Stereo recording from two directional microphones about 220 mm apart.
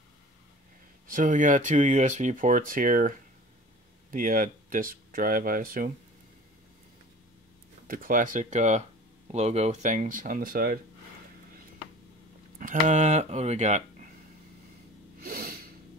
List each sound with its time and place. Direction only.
1.0 s speech: 35° right (ahead or behind)
7.9 s speech: 40° right (ahead or behind)
12.8 s speech: 30° right (ahead or behind)
15.2 s snort: 40° right (ahead or behind)